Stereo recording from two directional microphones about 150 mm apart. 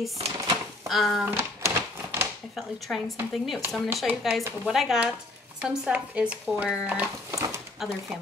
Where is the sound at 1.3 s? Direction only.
15° right (ahead or behind).